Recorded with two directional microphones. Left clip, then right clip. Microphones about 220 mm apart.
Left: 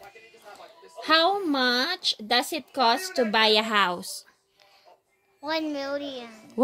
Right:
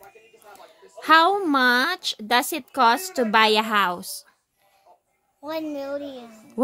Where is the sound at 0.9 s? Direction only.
15° right (ahead or behind).